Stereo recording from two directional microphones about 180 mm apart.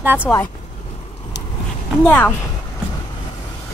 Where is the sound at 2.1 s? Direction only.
10° left (ahead or behind).